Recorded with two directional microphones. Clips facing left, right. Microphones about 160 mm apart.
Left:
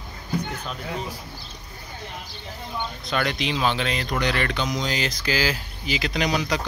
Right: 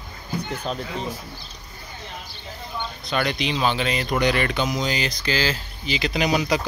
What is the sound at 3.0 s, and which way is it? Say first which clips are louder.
Speech: right 2 dB; centre (ahead or behind).